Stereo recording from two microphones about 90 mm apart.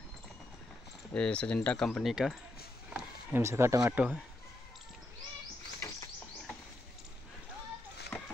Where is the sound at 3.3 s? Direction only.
30° right (ahead or behind).